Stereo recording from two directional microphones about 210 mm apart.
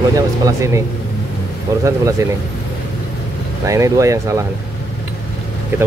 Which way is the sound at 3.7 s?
15° right (ahead or behind).